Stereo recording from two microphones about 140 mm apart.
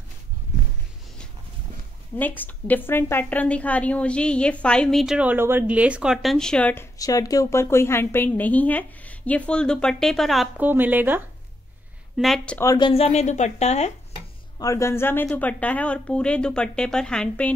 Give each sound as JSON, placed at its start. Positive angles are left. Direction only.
{"t": 2.1, "sound": "a woman's voice", "side_deg": 10}
{"t": 7.0, "sound": "a woman's voice", "side_deg": 25}
{"t": 10.6, "sound": "speech", "side_deg": -15}
{"t": 12.2, "sound": "speech", "side_deg": 0}
{"t": 12.7, "sound": "a woman's voice", "side_deg": 40}
{"t": 14.6, "sound": "a woman's voice", "side_deg": 20}